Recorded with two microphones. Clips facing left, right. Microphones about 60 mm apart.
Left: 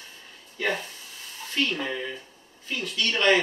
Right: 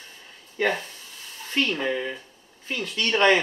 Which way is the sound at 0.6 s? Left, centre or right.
Right.